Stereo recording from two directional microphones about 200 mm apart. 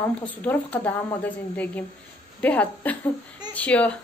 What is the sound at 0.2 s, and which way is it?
A woman's voice, 5° left (ahead or behind).